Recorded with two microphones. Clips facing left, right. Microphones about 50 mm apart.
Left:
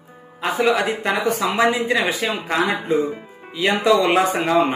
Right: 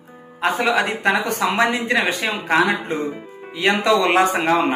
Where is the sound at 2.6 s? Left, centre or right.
Right.